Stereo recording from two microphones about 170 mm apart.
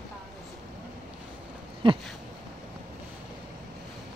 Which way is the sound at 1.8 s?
30° right (ahead or behind).